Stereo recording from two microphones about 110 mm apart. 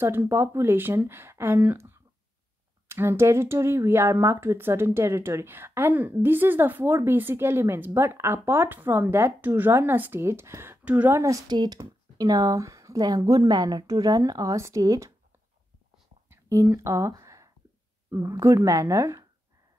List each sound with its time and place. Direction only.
0.0 s a woman's voice: 20° right (ahead or behind)
11.1 s a woman's voice: 30° right (ahead or behind)
16.3 s a sound: 25° right (ahead or behind)
18.1 s a woman's voice: 30° right (ahead or behind)